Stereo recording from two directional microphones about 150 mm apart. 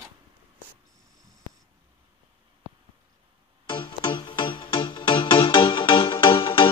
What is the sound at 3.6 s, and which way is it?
Music, 30° left (ahead or behind).